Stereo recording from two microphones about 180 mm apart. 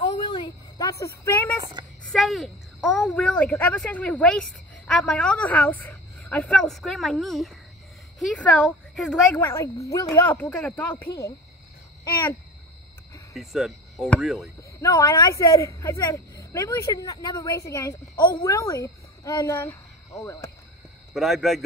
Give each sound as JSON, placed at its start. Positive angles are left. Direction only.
{"t": 0.0, "sound": "a sound", "side_deg": 25}
{"t": 1.6, "sound": "a sound", "side_deg": -25}
{"t": 2.0, "sound": "speech", "side_deg": 0}
{"t": 9.4, "sound": "speech", "side_deg": 15}
{"t": 12.0, "sound": "speech", "side_deg": 20}
{"t": 13.3, "sound": "speech", "side_deg": 0}
{"t": 14.6, "sound": "speech", "side_deg": 20}
{"t": 21.1, "sound": "speech", "side_deg": 0}